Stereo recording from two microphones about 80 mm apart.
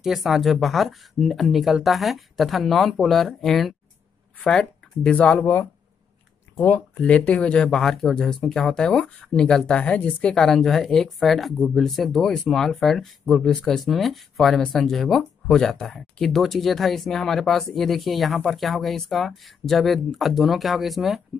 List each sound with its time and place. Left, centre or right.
0.0 s speech: centre
6.5 s speech: left
10.4 s speech: centre